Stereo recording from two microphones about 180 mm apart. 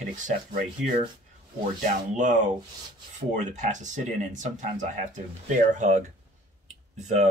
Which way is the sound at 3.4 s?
45° right (ahead or behind).